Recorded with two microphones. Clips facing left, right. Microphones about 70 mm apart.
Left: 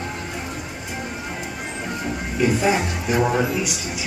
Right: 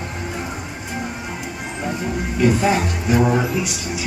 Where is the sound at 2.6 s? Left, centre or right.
Centre.